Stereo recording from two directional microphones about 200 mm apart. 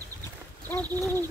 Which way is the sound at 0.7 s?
15° left (ahead or behind).